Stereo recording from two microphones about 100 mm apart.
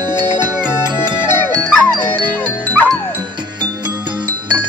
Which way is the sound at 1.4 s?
20° left (ahead or behind).